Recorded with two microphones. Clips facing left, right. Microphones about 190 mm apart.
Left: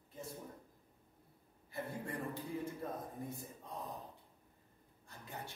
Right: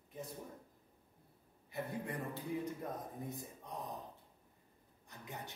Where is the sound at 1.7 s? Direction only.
15° right (ahead or behind).